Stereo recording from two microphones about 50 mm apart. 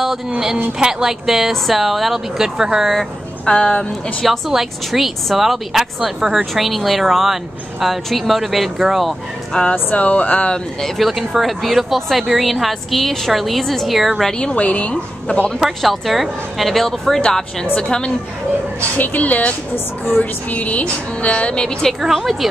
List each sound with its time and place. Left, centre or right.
0.7 s speech: centre
3.4 s a woman's voice: centre
4.5 s speech: centre
9.5 s a woman's voice: centre
11.0 s speech: centre
14.4 s a woman's voice: left
15.6 s a woman's voice: centre
17.7 s a woman's voice: centre
18.9 s a woman's voice: left; by 21.9 s centre
22.1 s speech: centre